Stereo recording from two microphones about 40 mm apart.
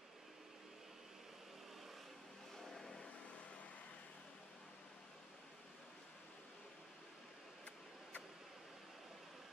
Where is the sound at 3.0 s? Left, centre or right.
Left.